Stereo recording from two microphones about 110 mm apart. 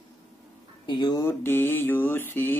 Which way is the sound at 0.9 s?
45° left (ahead or behind).